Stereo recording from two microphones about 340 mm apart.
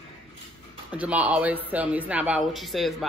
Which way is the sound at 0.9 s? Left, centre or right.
Centre.